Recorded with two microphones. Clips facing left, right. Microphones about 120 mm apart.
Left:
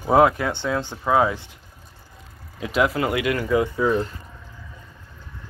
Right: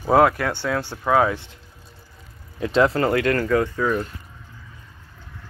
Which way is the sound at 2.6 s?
5° left (ahead or behind).